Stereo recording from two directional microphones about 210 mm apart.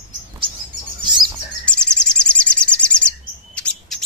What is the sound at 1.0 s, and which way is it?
Bird, 20° right (ahead or behind).